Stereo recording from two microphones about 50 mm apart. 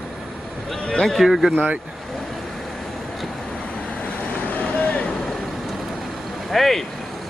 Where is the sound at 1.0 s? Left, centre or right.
Centre.